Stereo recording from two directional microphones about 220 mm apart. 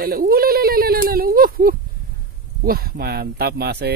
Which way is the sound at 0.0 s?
45° right (ahead or behind).